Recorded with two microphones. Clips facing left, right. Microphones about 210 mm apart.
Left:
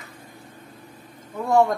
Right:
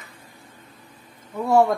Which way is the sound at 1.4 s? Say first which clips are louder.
Right 1 dB; 5° right (ahead or behind).